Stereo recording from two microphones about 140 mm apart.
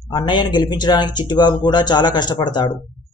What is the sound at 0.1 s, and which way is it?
A man's voice, 35° left (ahead or behind).